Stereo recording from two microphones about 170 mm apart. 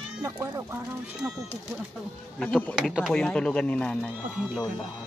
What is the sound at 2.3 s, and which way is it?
Speech, 5° left (ahead or behind).